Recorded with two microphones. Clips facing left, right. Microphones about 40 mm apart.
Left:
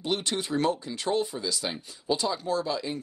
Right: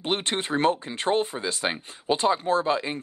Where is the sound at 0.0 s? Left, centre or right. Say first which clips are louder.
Right 2 dB; right.